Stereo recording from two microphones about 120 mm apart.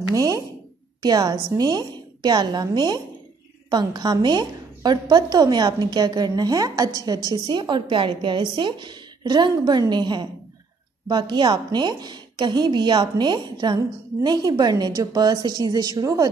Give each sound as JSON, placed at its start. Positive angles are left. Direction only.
{"t": 0.1, "sound": "a woman's voice", "side_deg": -30}